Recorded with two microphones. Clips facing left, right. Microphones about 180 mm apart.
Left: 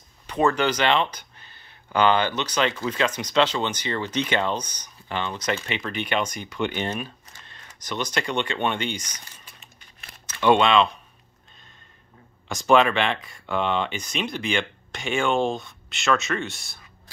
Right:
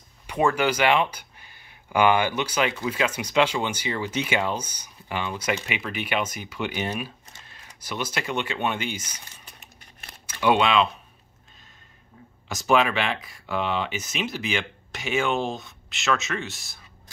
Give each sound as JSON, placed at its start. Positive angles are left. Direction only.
{"t": 0.3, "sound": "speech", "side_deg": -10}
{"t": 10.4, "sound": "speech", "side_deg": -5}
{"t": 12.4, "sound": "speech", "side_deg": -5}